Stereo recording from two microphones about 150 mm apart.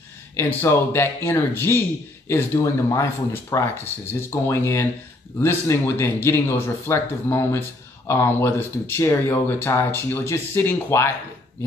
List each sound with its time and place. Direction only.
0.4 s speech: 15° left (ahead or behind)